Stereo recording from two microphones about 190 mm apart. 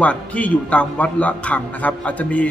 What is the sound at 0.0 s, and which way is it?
A man's voice, 5° left (ahead or behind).